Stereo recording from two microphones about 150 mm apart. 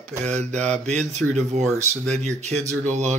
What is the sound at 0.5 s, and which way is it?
Mantra, 5° left (ahead or behind).